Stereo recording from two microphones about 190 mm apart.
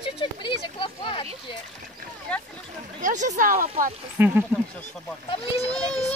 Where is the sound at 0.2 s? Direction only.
25° left (ahead or behind).